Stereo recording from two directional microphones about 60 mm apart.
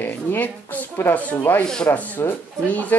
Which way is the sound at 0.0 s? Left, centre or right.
Left.